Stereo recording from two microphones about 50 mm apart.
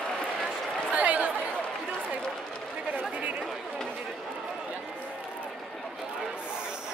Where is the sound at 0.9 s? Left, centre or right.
Right.